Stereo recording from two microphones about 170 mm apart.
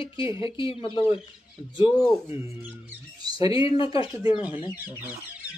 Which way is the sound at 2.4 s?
20° right (ahead or behind).